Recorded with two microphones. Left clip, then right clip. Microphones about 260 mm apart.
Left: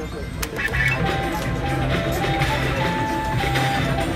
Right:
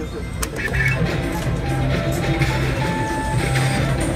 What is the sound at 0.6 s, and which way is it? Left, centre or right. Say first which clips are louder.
Music: even; centre.